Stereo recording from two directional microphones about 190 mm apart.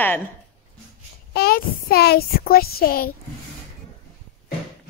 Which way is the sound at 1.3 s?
55° left (ahead or behind).